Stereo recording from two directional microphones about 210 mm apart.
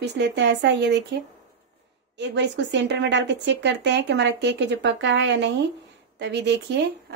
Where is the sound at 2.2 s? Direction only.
55° right (ahead or behind).